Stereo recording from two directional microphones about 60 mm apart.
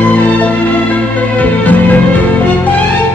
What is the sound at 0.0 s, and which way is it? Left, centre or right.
Music, left.